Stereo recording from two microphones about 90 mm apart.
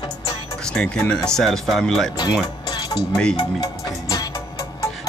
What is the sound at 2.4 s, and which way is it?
Music, 60° left (ahead or behind).